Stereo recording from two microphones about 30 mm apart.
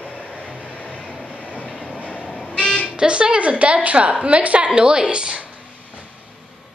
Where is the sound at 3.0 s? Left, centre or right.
Right.